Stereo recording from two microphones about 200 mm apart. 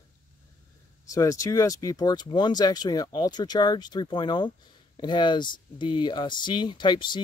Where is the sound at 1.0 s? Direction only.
15° left (ahead or behind).